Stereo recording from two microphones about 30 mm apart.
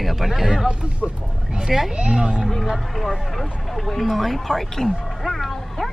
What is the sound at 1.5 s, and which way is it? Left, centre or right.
Speech, right.